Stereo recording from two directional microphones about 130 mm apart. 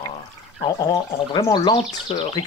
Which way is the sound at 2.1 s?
45° left (ahead or behind).